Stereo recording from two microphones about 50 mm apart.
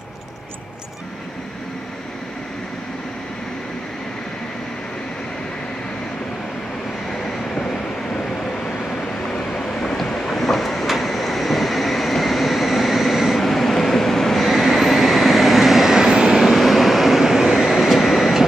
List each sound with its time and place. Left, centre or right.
7.5 s vehicle: centre
9.3 s vehicle: centre
16.4 s train: centre